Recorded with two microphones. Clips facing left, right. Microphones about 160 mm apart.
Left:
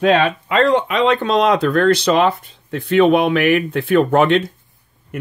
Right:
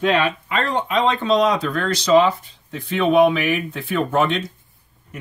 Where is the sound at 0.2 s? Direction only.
80° left.